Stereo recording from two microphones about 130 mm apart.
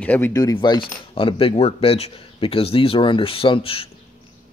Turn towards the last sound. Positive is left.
turn(degrees=45)  # may be behind; listen again after turning